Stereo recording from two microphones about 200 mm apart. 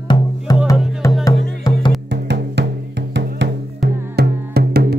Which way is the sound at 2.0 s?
60° right (ahead or behind).